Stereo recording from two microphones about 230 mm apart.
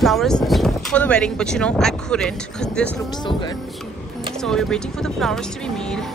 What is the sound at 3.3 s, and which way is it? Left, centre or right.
Speech, left.